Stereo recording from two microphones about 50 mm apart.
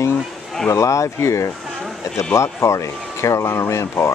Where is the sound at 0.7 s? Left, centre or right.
Left.